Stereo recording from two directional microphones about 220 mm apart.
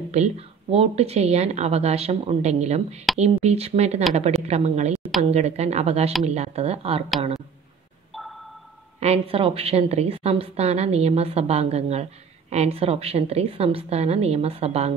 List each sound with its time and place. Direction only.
0.1 s a woman's voice: 30° right (ahead or behind)
8.1 s a sound: centre (ahead or behind)
9.0 s a woman's voice: 25° right (ahead or behind)